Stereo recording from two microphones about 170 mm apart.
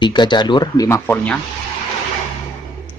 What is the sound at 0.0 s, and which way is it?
Speech, 25° left (ahead or behind).